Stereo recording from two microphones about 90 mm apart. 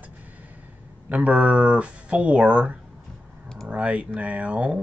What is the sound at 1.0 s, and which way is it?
Speech, 15° right (ahead or behind).